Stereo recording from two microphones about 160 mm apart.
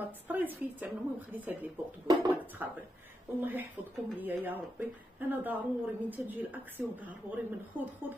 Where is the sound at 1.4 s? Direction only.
10° right (ahead or behind).